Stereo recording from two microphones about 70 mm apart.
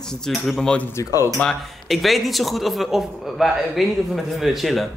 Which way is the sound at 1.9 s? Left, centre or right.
Centre.